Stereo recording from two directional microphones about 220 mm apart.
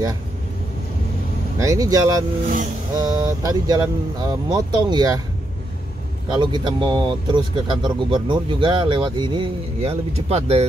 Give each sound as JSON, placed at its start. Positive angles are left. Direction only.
{"t": 1.6, "sound": "speech", "side_deg": -15}
{"t": 2.4, "sound": "speech", "side_deg": -35}
{"t": 3.0, "sound": "speech", "side_deg": -15}
{"t": 6.3, "sound": "speech", "side_deg": -20}